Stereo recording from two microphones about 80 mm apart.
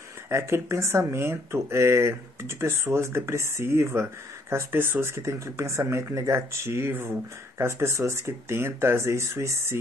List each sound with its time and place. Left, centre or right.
0.3 s speech: right